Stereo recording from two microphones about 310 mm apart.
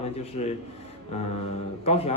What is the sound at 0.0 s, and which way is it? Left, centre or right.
Speech, centre.